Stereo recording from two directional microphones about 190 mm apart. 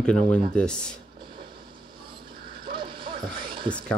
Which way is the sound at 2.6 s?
25° right (ahead or behind).